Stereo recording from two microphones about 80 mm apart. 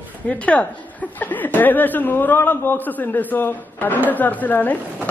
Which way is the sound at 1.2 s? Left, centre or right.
Left.